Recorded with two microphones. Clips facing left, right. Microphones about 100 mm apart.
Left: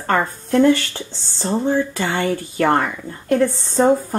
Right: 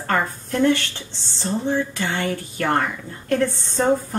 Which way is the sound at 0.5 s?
40° left (ahead or behind).